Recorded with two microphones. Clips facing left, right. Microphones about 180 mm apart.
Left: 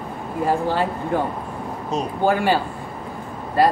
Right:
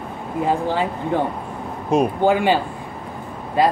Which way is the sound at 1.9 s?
55° right (ahead or behind).